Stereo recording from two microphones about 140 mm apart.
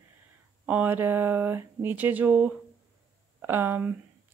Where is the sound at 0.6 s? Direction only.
10° right (ahead or behind).